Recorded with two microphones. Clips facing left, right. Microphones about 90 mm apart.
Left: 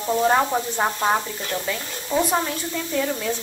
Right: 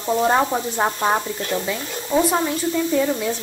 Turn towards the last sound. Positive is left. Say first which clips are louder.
# right 4 dB
turn(degrees=-5)  # may be behind; listen again after turning